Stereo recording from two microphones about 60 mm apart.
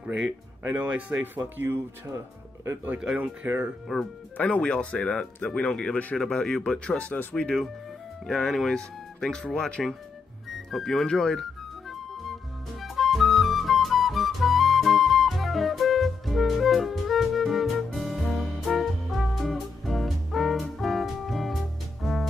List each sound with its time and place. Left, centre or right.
0.7 s speech: right
2.1 s speech: right
3.2 s speech: right
4.4 s speech: centre
6.1 s speech: centre
8.3 s speech: centre
11.9 s music: centre